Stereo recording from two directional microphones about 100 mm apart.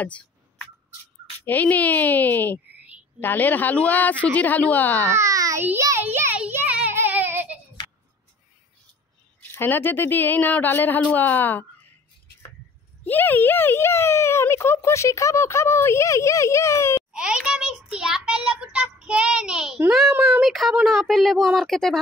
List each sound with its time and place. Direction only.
0.0 s turkey: 15° left (ahead or behind)
1.4 s a woman's voice: 15° left (ahead or behind)
5.1 s a child's voice: 30° right (ahead or behind)
5.8 s a sound: 30° right (ahead or behind)
6.0 s child singing: 20° right (ahead or behind)
9.6 s speech: 20° left (ahead or behind)
13.0 s speech: 20° left (ahead or behind)
17.1 s a sound: 10° right (ahead or behind)
20.1 s speech: 25° right (ahead or behind)
20.4 s speech: centre (ahead or behind)